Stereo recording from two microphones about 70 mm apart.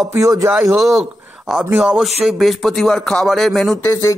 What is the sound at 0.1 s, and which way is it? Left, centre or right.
Speech, right.